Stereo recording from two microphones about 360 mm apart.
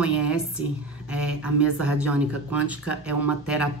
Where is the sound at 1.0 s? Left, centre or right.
Centre.